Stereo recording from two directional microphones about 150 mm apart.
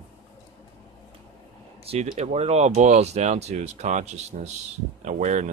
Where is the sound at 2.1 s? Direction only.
50° right (ahead or behind).